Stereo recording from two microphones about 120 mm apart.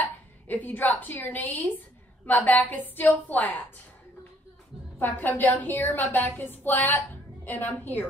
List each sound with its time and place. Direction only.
0.0 s a woman's voice: 15° left (ahead or behind)
4.9 s a woman's voice: 15° left (ahead or behind)